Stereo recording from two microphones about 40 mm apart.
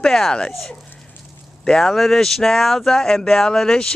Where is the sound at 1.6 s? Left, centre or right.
Centre.